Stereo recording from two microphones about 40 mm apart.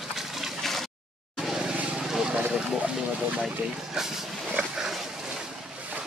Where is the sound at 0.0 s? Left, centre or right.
Centre.